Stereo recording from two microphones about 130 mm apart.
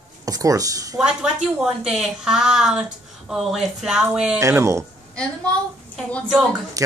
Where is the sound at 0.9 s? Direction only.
5° right (ahead or behind).